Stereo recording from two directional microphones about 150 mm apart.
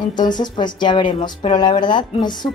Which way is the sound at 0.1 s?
30° left (ahead or behind).